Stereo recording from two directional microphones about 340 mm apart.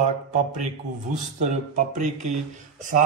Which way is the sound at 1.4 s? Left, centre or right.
Right.